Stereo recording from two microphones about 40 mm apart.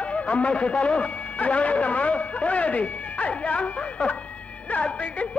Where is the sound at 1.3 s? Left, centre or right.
Left.